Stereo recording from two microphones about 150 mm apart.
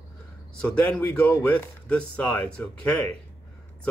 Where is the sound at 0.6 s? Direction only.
10° left (ahead or behind).